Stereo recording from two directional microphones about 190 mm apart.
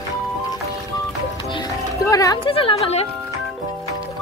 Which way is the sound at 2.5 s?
30° left (ahead or behind).